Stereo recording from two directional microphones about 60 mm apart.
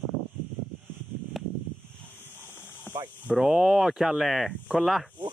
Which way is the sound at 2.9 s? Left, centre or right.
Left.